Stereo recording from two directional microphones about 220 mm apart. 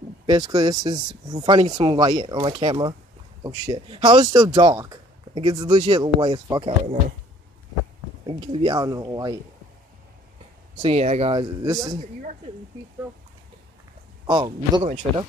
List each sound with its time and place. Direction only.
0.3 s speech: 20° right (ahead or behind)
8.3 s speech: 20° right (ahead or behind)
10.8 s speech: 25° right (ahead or behind)
11.6 s speech: 15° right (ahead or behind)
14.2 s speech: 20° right (ahead or behind)